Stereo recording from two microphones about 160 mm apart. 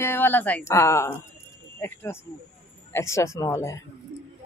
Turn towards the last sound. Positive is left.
turn(degrees=20)  # may be behind; listen again after turning